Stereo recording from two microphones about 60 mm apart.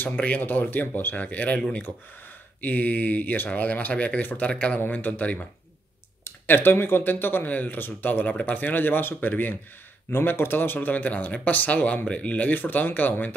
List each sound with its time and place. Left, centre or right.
0.0 s speech: left
2.6 s speech: left
4.5 s speech: centre
4.7 s speech: left
6.2 s speech: left